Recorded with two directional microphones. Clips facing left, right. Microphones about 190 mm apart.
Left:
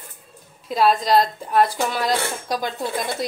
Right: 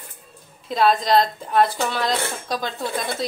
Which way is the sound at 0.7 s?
5° left (ahead or behind).